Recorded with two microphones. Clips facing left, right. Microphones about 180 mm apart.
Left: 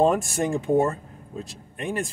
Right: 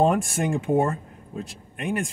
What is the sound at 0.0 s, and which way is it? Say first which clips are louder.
Speech: even; 35° left (ahead or behind).